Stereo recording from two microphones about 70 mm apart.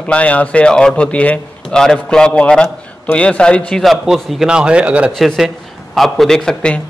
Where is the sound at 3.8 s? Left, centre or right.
Centre.